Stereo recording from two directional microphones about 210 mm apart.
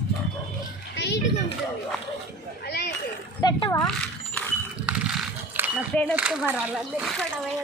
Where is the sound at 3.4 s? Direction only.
20° left (ahead or behind).